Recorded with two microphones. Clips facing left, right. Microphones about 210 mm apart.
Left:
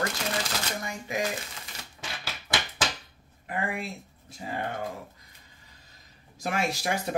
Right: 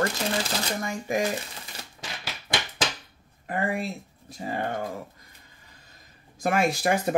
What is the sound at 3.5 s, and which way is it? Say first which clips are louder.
Speech: right 4 dB; 40° right (ahead or behind).